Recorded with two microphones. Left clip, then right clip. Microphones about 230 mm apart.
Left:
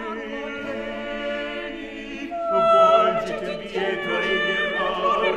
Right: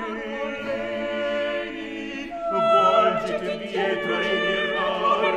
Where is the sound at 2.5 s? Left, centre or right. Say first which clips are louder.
Left 2 dB; left.